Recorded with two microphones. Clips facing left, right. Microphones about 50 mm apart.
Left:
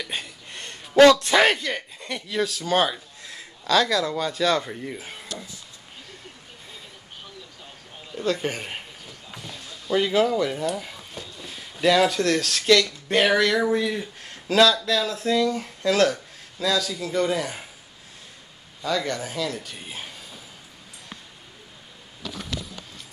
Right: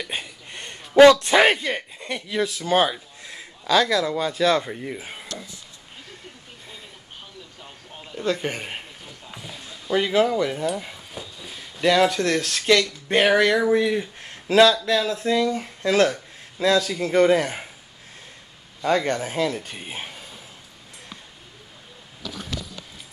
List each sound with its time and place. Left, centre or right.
0.0 s a sound: centre
1.2 s speech: centre
8.1 s a sound: centre
11.7 s speech: centre
16.6 s a man's voice: right
18.8 s speech: right